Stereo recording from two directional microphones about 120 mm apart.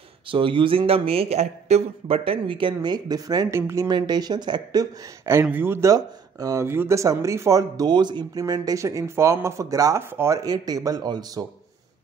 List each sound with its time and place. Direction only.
0.3 s a man's voice: 45° right (ahead or behind); by 3.9 s 25° right (ahead or behind)
3.9 s speech: 35° right (ahead or behind)
5.2 s speech: 20° right (ahead or behind)